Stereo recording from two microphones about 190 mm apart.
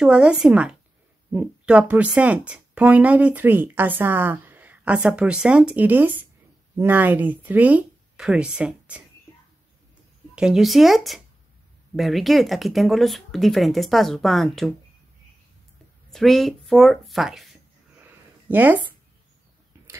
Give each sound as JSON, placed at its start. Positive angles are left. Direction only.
{"t": 0.0, "sound": "speech", "side_deg": -5}
{"t": 10.3, "sound": "speech", "side_deg": -5}
{"t": 16.1, "sound": "speech", "side_deg": 0}
{"t": 18.0, "sound": "a sound", "side_deg": -10}